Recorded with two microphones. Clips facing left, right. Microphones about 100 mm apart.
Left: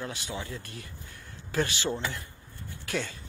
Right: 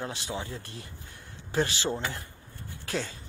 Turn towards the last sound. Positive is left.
turn(degrees=-30)  # may be behind; listen again after turning